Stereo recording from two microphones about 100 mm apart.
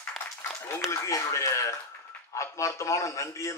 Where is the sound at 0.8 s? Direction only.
30° left (ahead or behind).